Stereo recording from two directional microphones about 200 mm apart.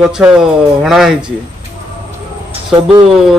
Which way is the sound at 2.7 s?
25° right (ahead or behind).